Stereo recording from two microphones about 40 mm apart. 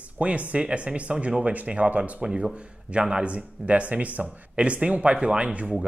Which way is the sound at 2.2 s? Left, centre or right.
Centre.